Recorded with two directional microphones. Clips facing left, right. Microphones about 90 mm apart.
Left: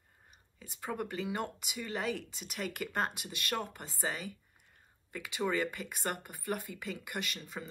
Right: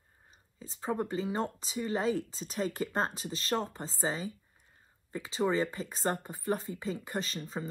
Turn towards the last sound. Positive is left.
turn(degrees=-30)  # may be behind; listen again after turning